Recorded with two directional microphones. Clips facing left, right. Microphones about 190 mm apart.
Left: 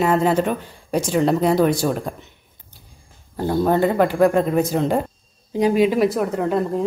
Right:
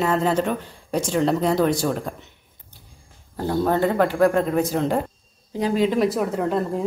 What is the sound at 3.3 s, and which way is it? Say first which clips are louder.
Speech: left 3 dB; 15° left (ahead or behind).